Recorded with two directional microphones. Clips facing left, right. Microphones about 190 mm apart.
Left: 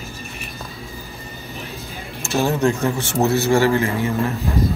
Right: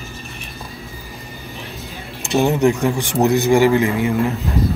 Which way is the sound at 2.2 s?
15° right (ahead or behind).